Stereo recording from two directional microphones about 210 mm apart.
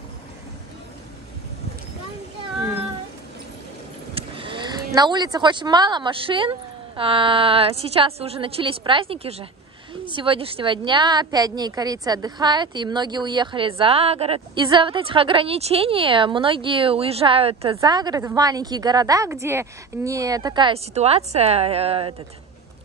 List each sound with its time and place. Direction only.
4.1 s speech: 25° right (ahead or behind)